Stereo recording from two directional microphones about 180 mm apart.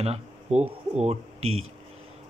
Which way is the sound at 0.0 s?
35° right (ahead or behind).